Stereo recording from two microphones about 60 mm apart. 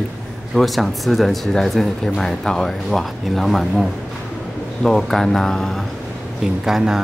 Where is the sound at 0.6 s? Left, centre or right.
Centre.